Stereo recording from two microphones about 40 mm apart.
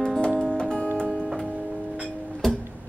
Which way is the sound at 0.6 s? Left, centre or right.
Left.